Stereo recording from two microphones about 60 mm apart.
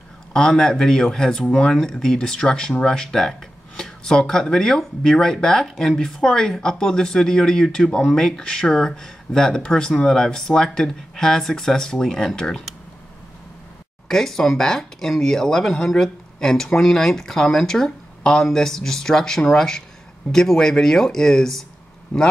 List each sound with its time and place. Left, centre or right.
0.3 s speech: centre
14.0 s speech: centre